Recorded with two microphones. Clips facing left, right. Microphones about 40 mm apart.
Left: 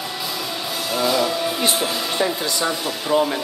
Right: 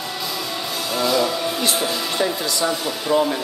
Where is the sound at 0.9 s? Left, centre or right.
Centre.